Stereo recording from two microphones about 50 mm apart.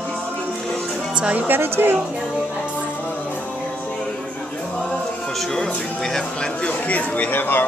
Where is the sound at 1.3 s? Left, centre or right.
Right.